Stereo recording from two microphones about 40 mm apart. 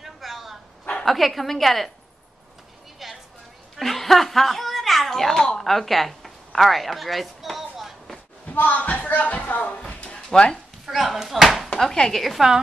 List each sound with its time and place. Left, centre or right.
0.0 s bow-wow: centre
1.0 s a woman's voice: centre
3.0 s a sound: centre
5.4 s a woman's voice: centre
8.5 s speech: left
9.8 s a sound: left
10.9 s a woman's voice: centre
11.1 s speech: centre
11.4 s chopping: centre
11.8 s speech: centre
12.4 s speech: centre